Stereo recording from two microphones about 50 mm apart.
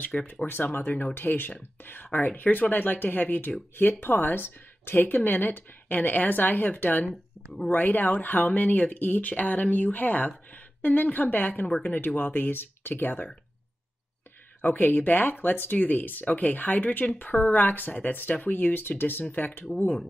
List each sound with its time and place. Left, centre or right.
0.1 s speech: centre
0.5 s speech: left
14.6 s speech: left